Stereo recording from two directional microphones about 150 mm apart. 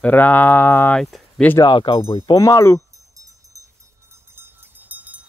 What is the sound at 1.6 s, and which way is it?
Speech, 35° left (ahead or behind).